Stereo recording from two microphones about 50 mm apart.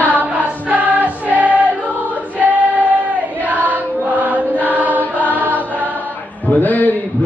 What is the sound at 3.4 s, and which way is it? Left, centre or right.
Chant, right.